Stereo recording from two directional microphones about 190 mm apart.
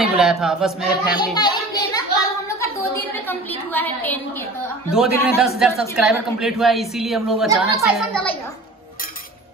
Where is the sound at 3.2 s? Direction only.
10° left (ahead or behind).